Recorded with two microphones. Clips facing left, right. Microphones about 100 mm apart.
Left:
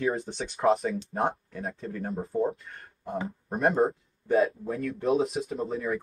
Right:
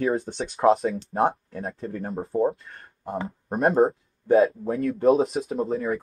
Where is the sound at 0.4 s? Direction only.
35° right (ahead or behind).